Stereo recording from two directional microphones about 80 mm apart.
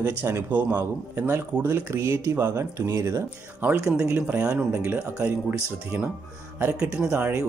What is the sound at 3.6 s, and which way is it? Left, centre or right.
Speech, right.